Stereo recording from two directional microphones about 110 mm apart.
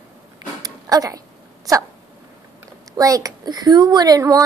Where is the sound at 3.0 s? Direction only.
30° right (ahead or behind).